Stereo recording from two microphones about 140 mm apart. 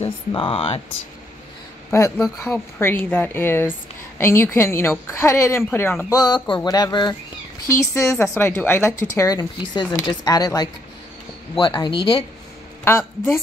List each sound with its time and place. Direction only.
0.3 s speech: 40° left (ahead or behind)
1.9 s a woman's voice: 20° left (ahead or behind)
7.6 s a woman's voice: 20° left (ahead or behind); by 12.3 s 35° left (ahead or behind)